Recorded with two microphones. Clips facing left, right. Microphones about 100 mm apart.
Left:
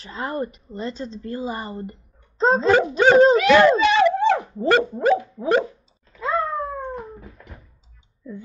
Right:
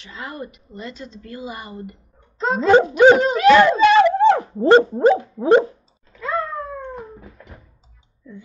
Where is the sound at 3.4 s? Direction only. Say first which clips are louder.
Right 2 dB; 40° right (ahead or behind).